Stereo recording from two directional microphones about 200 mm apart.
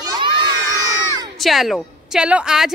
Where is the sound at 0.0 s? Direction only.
20° right (ahead or behind).